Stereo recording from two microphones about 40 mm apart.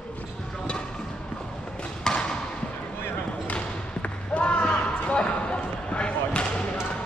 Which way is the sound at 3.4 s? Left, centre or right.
Left.